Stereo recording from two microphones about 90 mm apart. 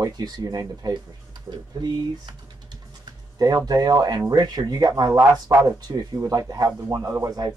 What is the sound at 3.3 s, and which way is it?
A man's voice, 45° right (ahead or behind).